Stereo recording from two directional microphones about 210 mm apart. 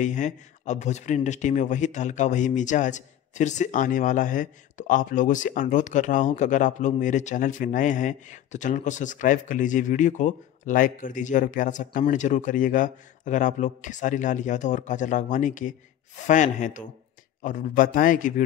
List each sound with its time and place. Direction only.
0.0 s speech: 35° left (ahead or behind)